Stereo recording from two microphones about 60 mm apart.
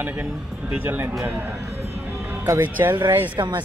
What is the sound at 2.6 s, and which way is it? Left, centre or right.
Speech, right.